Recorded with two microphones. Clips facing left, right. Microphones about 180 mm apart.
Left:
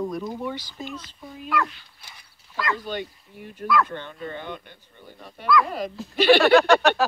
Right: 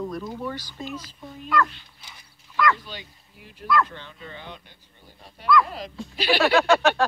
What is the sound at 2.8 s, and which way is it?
Speech, 55° left (ahead or behind).